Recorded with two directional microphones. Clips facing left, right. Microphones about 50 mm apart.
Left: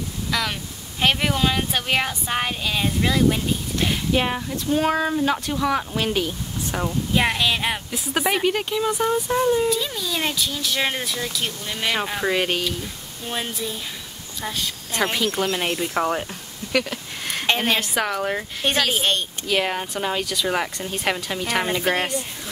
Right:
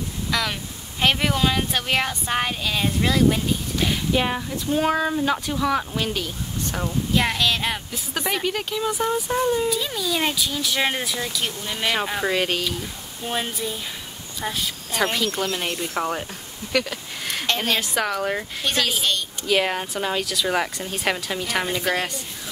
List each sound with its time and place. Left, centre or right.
0.3 s speech: centre
6.0 s speech: centre
15.4 s speech: centre
17.5 s speech: centre
17.7 s speech: centre
18.9 s speech: left
19.4 s speech: centre
21.9 s speech: left